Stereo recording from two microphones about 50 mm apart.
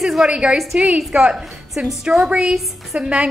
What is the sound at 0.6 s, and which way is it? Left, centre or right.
A woman's voice, centre.